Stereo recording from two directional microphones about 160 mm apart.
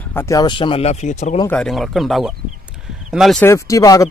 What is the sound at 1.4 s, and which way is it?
Speech, 5° left (ahead or behind).